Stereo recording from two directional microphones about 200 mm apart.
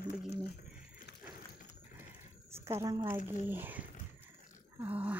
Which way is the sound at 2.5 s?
15° right (ahead or behind).